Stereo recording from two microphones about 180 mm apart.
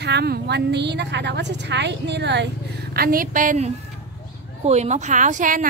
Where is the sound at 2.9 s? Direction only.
55° right (ahead or behind).